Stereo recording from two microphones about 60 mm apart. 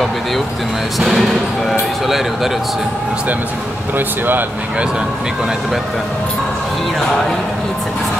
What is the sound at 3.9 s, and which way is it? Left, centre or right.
Speech, right.